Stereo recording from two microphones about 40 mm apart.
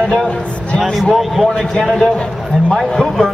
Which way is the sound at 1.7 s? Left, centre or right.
Centre.